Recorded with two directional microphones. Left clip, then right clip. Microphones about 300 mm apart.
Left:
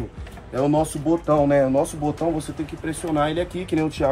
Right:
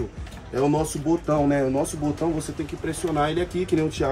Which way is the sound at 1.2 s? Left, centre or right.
Centre.